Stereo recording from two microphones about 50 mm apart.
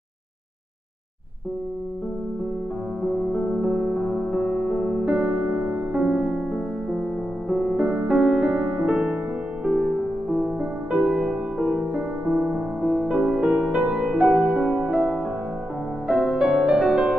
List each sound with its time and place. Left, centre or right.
3.0 s music: centre
5.7 s music: right
6.5 s music: centre
8.1 s music: centre
9.7 s music: right
10.6 s music: centre
12.8 s music: centre